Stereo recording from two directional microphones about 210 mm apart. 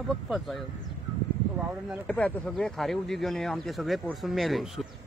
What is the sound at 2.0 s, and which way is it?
Speech, 5° left (ahead or behind).